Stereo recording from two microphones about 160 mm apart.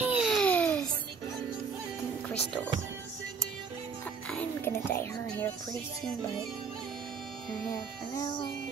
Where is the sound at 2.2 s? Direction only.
10° left (ahead or behind).